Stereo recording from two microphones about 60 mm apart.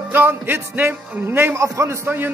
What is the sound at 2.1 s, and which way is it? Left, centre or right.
Speech, right.